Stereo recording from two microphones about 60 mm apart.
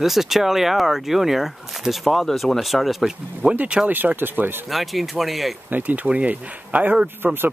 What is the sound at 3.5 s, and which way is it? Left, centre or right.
Speech, centre.